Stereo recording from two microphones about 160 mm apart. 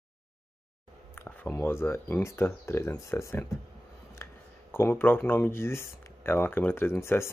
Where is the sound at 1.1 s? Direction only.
15° left (ahead or behind).